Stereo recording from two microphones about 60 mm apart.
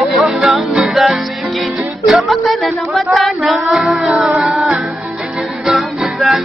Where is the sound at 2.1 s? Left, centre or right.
Centre.